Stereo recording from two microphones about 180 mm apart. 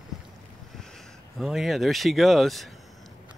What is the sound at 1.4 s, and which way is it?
Speech, centre (ahead or behind).